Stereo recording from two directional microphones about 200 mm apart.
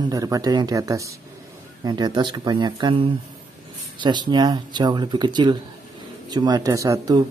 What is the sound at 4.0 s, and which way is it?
Speech, 20° right (ahead or behind).